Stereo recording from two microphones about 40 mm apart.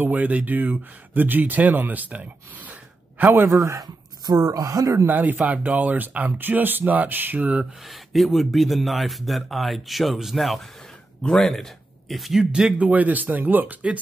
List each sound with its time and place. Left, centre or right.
0.0 s speech: right
3.3 s speech: right
5.0 s speech: right
5.4 s speech: right
7.8 s a man's voice: centre
11.2 s speech: centre
11.5 s speech: centre
12.4 s speech: centre
12.7 s speech: right